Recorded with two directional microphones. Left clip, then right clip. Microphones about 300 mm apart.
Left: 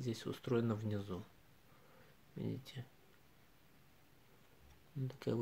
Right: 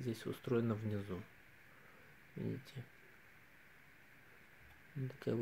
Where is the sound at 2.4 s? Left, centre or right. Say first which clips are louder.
Even; centre.